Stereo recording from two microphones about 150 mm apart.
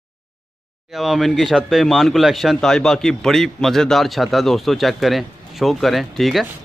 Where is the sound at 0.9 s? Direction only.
Centre (ahead or behind).